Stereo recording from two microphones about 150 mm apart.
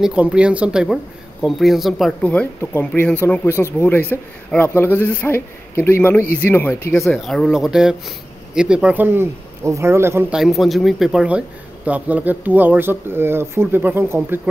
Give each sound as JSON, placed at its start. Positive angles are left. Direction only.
{"t": 0.0, "sound": "a man's voice", "side_deg": -5}
{"t": 7.2, "sound": "speech", "side_deg": 0}
{"t": 10.3, "sound": "speech", "side_deg": 0}